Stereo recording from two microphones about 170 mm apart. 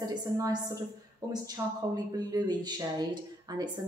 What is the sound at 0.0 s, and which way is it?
A woman's voice, 25° right (ahead or behind).